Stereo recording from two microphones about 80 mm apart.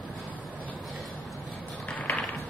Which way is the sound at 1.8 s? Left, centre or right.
Centre.